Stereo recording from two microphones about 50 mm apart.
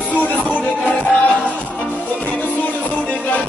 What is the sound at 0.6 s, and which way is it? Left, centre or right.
Music, left.